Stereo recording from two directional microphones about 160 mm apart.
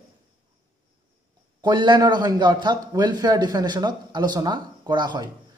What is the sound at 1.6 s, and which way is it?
A man's voice, 25° right (ahead or behind).